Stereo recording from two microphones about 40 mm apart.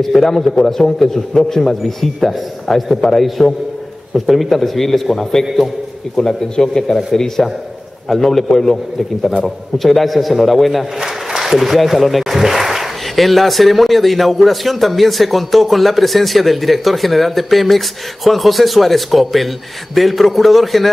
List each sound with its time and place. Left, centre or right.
0.0 s a man's voice: centre
9.8 s speech: centre